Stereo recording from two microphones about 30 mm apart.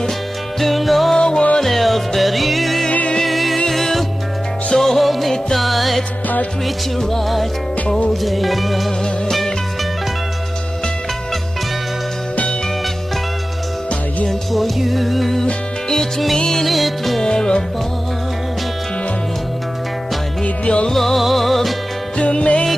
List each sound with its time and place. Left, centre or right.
0.6 s music: centre
1.1 s music: left
1.6 s music: centre
14.5 s music: centre
16.4 s music: centre
17.2 s music: left
20.4 s music: left
20.9 s music: centre
22.1 s music: left